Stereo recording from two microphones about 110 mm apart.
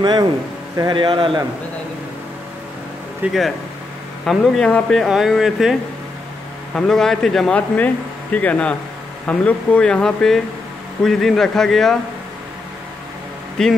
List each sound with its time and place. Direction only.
0.8 s a man's voice: 45° right (ahead or behind)
3.2 s speech: 15° right (ahead or behind)
4.3 s a man's voice: 5° left (ahead or behind)
13.6 s speech: 5° left (ahead or behind)